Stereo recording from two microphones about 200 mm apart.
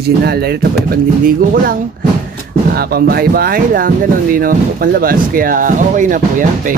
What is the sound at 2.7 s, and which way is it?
Speech, 50° right (ahead or behind).